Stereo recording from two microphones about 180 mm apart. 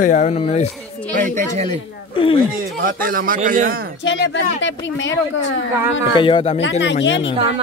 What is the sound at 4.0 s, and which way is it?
Speech, 90° left.